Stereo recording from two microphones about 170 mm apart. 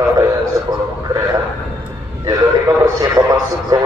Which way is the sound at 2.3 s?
20° right (ahead or behind).